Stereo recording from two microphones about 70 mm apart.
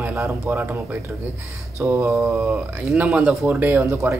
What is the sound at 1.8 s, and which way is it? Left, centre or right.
Speech, right.